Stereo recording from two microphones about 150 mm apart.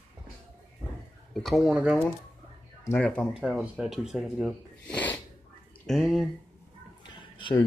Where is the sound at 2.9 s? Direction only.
5° left (ahead or behind).